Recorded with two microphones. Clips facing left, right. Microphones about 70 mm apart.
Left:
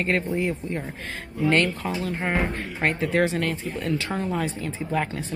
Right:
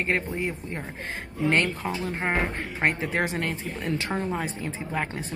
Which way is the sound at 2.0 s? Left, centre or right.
Right.